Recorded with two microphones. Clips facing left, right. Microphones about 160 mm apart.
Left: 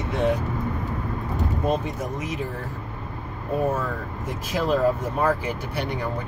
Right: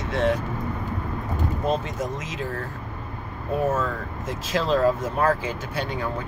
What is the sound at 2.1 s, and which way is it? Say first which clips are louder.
Speech: left 3 dB; 80° right.